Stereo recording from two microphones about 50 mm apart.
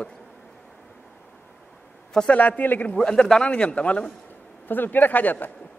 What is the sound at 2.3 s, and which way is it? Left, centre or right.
Speech, left.